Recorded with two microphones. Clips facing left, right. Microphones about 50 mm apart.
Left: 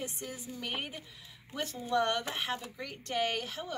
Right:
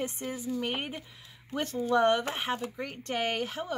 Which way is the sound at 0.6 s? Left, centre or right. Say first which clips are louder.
Right 5 dB; right.